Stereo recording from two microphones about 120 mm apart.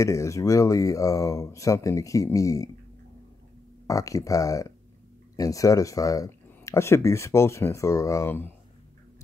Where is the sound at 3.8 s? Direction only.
30° left (ahead or behind).